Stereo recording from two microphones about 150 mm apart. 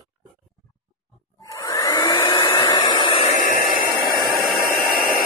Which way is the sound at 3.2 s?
60° left (ahead or behind).